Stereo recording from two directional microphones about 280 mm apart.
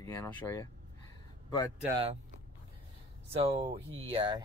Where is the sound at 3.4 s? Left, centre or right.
Centre.